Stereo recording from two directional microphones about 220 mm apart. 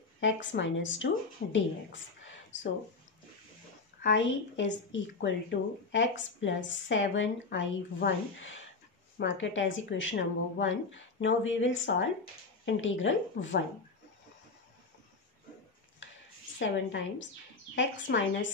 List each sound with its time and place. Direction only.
0.2 s a woman's voice: 55° left (ahead or behind)
4.0 s a woman's voice: 55° left (ahead or behind)
16.5 s a woman's voice: 55° left (ahead or behind)